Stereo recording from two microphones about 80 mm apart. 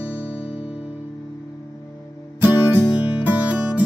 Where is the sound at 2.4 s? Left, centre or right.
Right.